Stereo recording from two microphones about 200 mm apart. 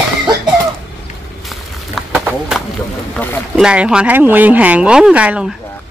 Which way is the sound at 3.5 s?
5° right (ahead or behind).